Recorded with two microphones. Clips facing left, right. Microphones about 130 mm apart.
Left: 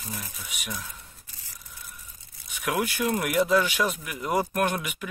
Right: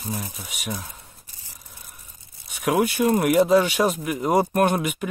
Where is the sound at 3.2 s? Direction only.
35° right (ahead or behind).